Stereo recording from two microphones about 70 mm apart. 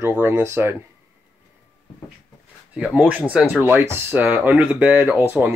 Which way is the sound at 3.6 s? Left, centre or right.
Right.